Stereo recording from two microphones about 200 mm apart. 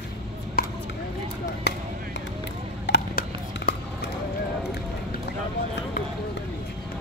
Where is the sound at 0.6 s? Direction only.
50° left (ahead or behind).